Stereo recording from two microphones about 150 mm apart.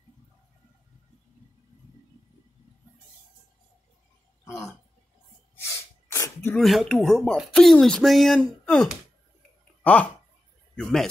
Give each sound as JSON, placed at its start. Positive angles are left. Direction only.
{"t": 6.0, "sound": "a sound", "side_deg": 20}
{"t": 6.5, "sound": "speech", "side_deg": 0}
{"t": 10.8, "sound": "speech", "side_deg": 5}